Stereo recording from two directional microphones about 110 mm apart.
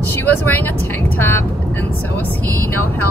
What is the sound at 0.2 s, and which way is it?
Speech, 15° left (ahead or behind).